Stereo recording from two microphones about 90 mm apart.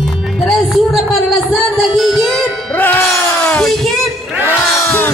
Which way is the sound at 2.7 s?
20° left (ahead or behind).